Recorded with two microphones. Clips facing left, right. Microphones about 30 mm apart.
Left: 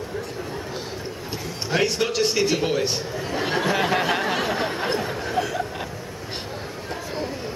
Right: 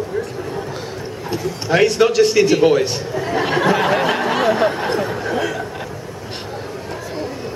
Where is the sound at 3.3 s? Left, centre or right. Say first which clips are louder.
Right 6 dB; right.